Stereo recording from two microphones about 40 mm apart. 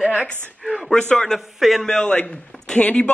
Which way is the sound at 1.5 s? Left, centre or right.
Centre.